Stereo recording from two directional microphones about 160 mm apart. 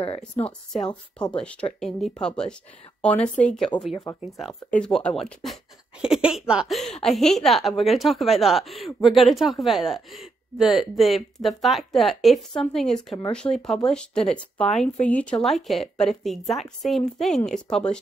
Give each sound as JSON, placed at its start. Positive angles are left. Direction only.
{"t": 0.0, "sound": "speech", "side_deg": 40}
{"t": 1.3, "sound": "a woman's voice", "side_deg": 5}
{"t": 3.9, "sound": "speech", "side_deg": 25}
{"t": 4.2, "sound": "speech", "side_deg": 0}
{"t": 13.4, "sound": "speech", "side_deg": 20}
{"t": 13.8, "sound": "speech", "side_deg": 5}